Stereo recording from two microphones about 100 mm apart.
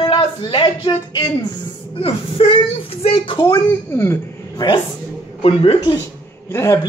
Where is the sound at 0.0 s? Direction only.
45° left (ahead or behind).